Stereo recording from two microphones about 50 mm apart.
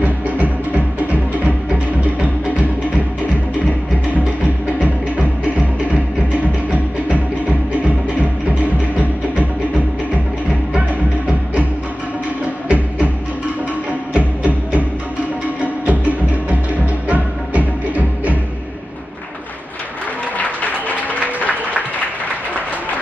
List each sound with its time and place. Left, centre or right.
0.0 s music: right
14.1 s music: right
21.1 s applause: left